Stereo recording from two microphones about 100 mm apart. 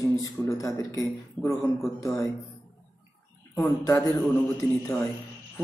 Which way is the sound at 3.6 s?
30° left (ahead or behind).